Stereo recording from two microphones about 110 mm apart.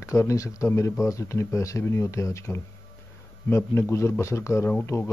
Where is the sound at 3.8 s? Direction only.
25° left (ahead or behind).